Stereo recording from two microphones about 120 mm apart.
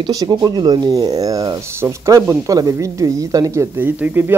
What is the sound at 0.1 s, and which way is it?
Speech, 30° right (ahead or behind).